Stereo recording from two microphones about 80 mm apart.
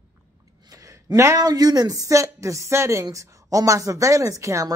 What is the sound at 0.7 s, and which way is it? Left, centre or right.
Speech, right.